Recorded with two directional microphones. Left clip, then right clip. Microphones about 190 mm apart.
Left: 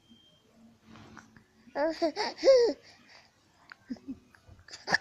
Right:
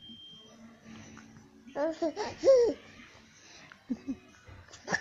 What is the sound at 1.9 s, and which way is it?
Laughter, 20° left (ahead or behind).